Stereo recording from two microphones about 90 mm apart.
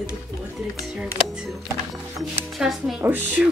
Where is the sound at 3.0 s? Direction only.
20° right (ahead or behind).